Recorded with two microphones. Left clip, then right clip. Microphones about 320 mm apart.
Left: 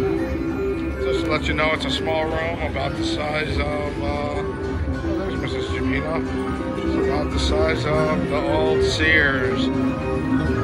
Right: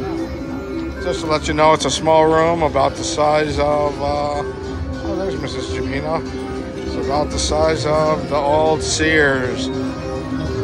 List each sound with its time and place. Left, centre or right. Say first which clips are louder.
1.0 s speech: right 3 dB; centre
2.0 s speech: right 13 dB; right
2.8 s speech: right 8 dB; centre
7.2 s speech: right 4 dB; centre